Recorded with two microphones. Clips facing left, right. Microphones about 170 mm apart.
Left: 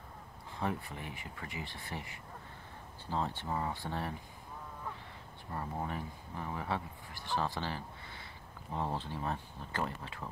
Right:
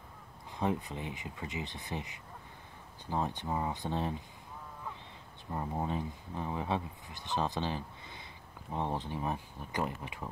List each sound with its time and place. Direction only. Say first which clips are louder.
0.6 s speech: right 4 dB; 20° right (ahead or behind)
5.5 s speech: right 4 dB; 20° right (ahead or behind)